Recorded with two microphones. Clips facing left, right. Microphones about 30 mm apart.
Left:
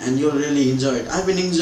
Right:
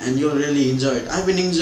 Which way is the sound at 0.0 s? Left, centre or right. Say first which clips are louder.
Even; centre.